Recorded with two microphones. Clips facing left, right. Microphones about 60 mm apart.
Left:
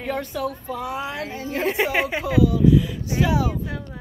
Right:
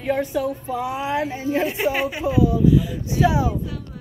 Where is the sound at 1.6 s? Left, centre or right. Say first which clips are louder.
Left 2 dB; left.